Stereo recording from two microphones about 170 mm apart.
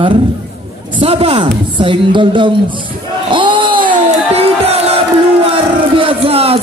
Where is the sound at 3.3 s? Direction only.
30° right (ahead or behind).